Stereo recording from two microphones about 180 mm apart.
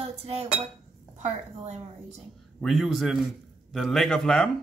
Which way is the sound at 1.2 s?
40° right (ahead or behind).